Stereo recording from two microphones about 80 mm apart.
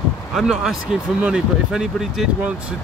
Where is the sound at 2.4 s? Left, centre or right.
Centre.